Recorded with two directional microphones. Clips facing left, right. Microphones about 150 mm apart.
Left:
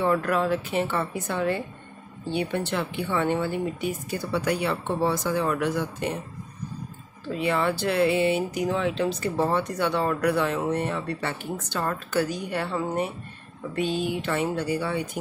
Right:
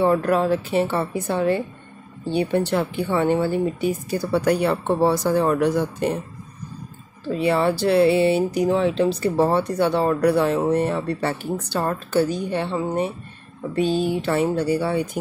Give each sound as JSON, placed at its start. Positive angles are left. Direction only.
{"t": 0.0, "sound": "speech", "side_deg": -30}
{"t": 7.2, "sound": "speech", "side_deg": -35}